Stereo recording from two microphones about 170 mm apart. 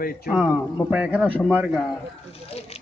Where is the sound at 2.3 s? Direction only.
35° left (ahead or behind).